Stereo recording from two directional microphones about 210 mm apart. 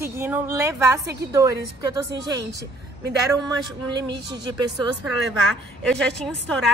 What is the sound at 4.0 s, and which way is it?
Speech, 20° right (ahead or behind).